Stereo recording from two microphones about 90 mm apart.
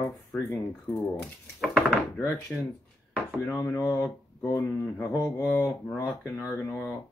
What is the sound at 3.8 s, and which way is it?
Speech, 25° left (ahead or behind).